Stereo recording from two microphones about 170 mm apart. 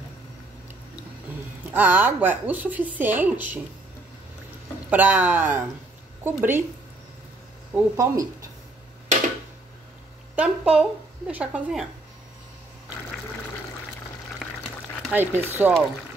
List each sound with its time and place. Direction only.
1.7 s a woman's voice: 10° right (ahead or behind)
4.8 s a woman's voice: 10° right (ahead or behind)
7.7 s a woman's voice: 20° right (ahead or behind)
10.3 s a woman's voice: 5° right (ahead or behind)
14.4 s water: 5° left (ahead or behind)
15.1 s a woman's voice: 10° right (ahead or behind)